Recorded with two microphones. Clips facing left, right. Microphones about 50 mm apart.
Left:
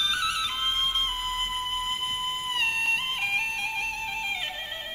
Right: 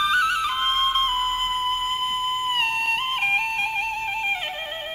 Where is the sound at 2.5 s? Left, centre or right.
Right.